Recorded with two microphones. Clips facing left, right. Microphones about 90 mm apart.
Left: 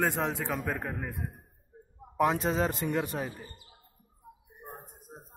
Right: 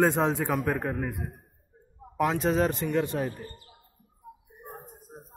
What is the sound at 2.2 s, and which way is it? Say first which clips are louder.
Speech: right 1 dB; 30° left (ahead or behind).